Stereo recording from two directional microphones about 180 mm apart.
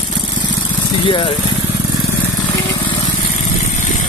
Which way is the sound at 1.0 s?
25° left (ahead or behind).